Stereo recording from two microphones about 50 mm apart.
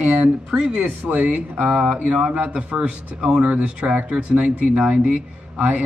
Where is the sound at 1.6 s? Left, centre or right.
Centre.